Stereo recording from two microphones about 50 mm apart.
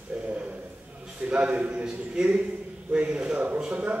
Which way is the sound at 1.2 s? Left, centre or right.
Right.